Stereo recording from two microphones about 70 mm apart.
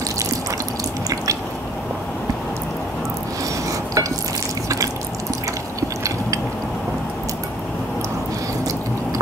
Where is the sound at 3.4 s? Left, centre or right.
Right.